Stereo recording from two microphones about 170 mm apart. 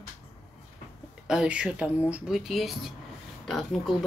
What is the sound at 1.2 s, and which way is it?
Speech, 5° right (ahead or behind).